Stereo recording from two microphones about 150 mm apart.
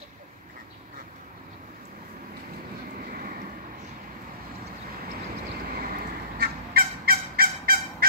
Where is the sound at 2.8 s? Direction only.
75° right (ahead or behind).